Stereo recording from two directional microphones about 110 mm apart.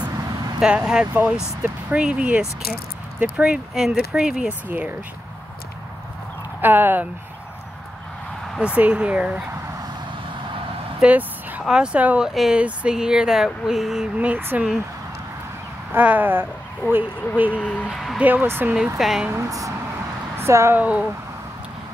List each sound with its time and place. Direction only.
0.0 s vehicle: 40° right (ahead or behind)
0.6 s speech: 5° right (ahead or behind)
6.6 s speech: 20° right (ahead or behind)
8.5 s speech: 10° right (ahead or behind)
11.0 s a sound: 15° right (ahead or behind)
11.6 s speech: 5° right (ahead or behind)
14.1 s speech: 15° right (ahead or behind)
15.9 s speech: 15° right (ahead or behind)
16.8 s speech: 20° left (ahead or behind)
17.4 s speech: 10° right (ahead or behind)
18.2 s speech: 15° right (ahead or behind)
18.9 s speech: 5° right (ahead or behind)
19.2 s speech: 25° right (ahead or behind)
20.8 s speech: 10° right (ahead or behind)